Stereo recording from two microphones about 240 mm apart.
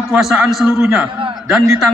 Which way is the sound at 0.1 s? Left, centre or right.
Centre.